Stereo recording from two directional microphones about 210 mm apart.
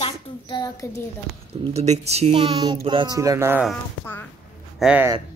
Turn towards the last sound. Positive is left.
turn(degrees=-5)  # may be behind; listen again after turning